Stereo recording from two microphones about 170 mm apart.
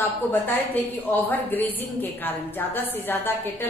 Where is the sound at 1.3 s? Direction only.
10° left (ahead or behind).